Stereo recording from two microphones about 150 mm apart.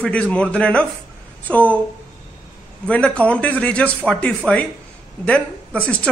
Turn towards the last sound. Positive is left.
turn(degrees=10)  # may be behind; listen again after turning